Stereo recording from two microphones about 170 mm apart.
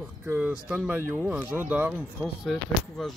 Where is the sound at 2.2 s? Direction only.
Centre (ahead or behind).